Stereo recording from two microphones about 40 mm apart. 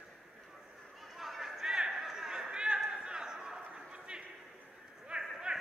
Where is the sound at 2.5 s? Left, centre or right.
Right.